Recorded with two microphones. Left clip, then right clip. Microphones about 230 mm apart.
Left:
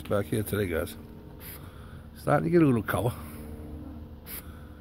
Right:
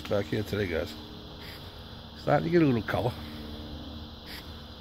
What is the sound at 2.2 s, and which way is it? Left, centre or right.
Speech, centre.